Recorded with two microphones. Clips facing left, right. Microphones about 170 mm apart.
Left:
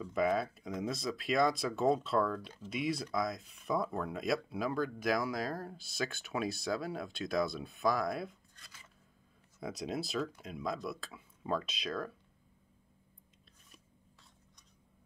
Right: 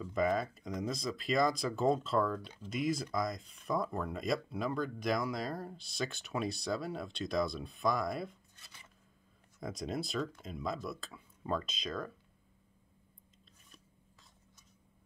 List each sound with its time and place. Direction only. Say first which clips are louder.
0.0 s speech: even; 5° left (ahead or behind)
8.5 s a sound: even; 20° right (ahead or behind)
9.6 s speech: even; centre (ahead or behind)